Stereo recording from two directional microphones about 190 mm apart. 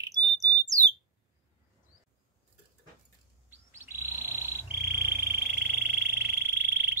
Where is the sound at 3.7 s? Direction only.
10° right (ahead or behind).